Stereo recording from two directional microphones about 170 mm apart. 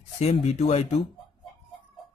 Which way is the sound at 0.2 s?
40° left (ahead or behind).